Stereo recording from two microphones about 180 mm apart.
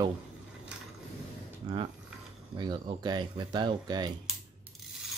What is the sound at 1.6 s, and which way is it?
Speech, 30° right (ahead or behind).